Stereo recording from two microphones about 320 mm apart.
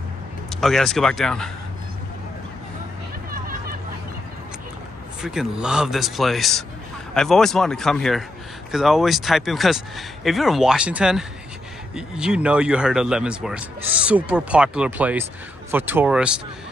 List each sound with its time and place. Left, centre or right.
0.5 s speech: centre
3.3 s a sound: right
5.2 s speech: centre